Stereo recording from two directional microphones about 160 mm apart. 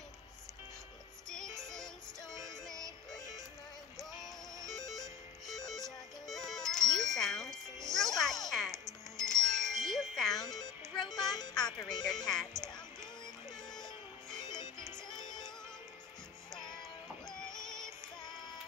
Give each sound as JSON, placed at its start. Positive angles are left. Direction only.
{"t": 2.6, "sound": "music", "side_deg": 5}
{"t": 3.9, "sound": "music", "side_deg": 0}
{"t": 9.1, "sound": "wind chime", "side_deg": 0}
{"t": 11.1, "sound": "music", "side_deg": 25}
{"t": 12.3, "sound": "music", "side_deg": 5}
{"t": 14.4, "sound": "music", "side_deg": 30}
{"t": 17.3, "sound": "synthetic singing", "side_deg": 5}